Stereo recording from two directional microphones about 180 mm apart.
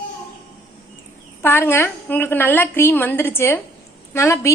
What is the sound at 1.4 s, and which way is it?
A woman's voice, 10° left (ahead or behind).